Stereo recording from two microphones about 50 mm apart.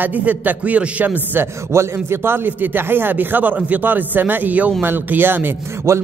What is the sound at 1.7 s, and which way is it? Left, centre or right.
Speech, right.